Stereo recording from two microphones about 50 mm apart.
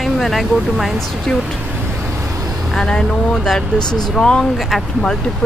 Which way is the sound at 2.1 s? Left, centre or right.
Right.